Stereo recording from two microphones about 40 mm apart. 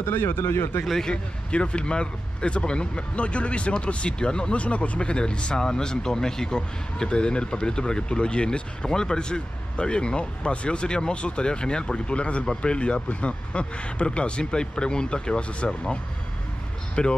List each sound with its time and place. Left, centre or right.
0.0 s speech: left
0.8 s a man's voice: centre
1.1 s speech: left